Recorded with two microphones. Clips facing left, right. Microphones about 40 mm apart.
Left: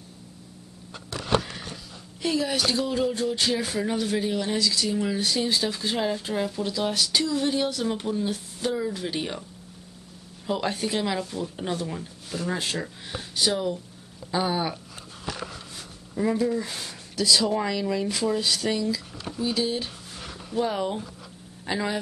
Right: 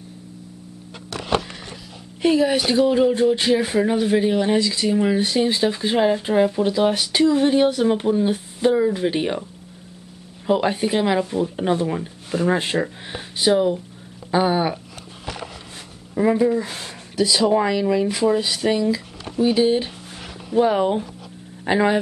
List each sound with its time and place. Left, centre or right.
2.2 s speech: right
10.4 s speech: right
15.2 s walk: right
16.2 s speech: right